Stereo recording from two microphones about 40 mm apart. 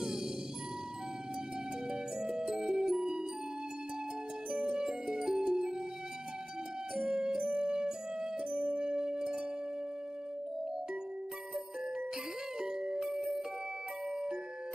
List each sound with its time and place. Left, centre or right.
1.9 s music: centre
4.6 s music: centre
7.0 s music: right
8.5 s music: right
8.8 s music: right
12.5 s music: centre